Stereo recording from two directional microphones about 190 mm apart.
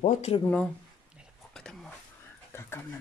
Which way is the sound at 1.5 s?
5° left (ahead or behind).